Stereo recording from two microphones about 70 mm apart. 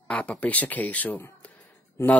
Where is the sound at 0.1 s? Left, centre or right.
Centre.